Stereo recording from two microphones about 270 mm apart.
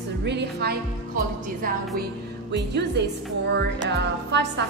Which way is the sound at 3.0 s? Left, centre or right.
Right.